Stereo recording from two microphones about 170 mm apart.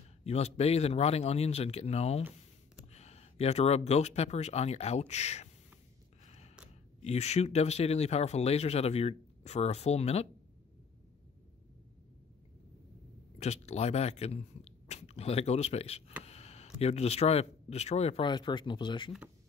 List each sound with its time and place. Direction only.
0.2 s speech: 40° left (ahead or behind)
6.2 s gasp: 40° left (ahead or behind)
7.0 s speech: 40° left (ahead or behind)
13.4 s speech: 40° left (ahead or behind)